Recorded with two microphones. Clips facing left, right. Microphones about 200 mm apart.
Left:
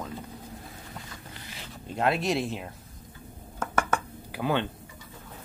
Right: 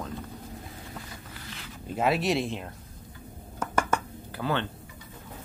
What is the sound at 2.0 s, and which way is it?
Speech, centre (ahead or behind).